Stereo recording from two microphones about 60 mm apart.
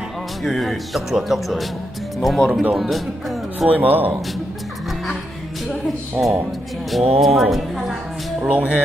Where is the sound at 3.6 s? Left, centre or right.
Right.